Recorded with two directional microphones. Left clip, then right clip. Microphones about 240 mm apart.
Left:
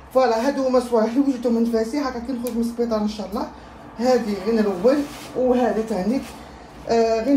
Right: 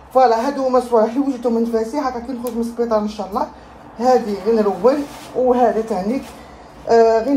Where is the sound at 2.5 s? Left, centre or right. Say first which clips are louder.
Right 3 dB; centre.